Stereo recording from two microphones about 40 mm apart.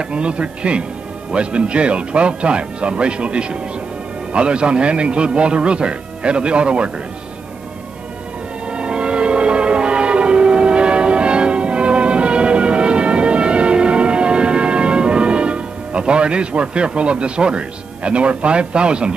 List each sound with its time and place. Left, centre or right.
0.0 s a man's voice: right
8.6 s change ringing: right